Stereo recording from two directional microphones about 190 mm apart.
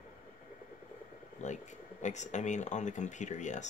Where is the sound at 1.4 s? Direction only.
40° left (ahead or behind).